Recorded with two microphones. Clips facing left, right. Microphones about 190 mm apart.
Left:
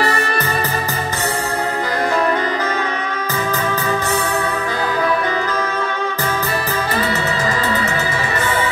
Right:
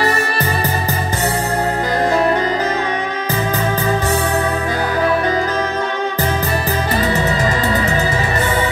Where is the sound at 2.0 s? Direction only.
30° right (ahead or behind).